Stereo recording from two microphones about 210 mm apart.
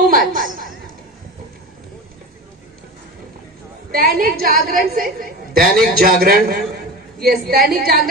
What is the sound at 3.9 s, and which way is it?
A woman's voice, 45° right (ahead or behind).